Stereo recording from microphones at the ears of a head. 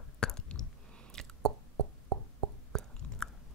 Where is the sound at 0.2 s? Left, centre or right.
Left.